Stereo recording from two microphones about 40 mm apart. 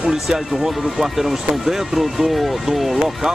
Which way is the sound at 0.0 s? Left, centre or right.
Centre.